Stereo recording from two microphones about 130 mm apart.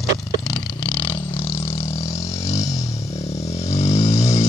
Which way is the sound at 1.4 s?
20° left (ahead or behind).